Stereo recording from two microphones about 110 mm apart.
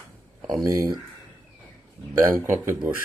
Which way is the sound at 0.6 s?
30° right (ahead or behind).